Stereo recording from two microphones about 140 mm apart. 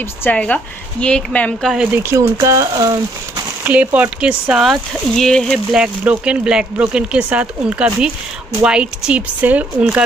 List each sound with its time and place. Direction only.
0.2 s speech: 10° left (ahead or behind)
1.7 s speech: 5° right (ahead or behind)
2.0 s speech: 20° right (ahead or behind)
3.6 s speech: 10° right (ahead or behind)